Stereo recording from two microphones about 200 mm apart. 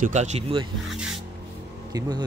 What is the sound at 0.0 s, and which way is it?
Speech, 35° right (ahead or behind).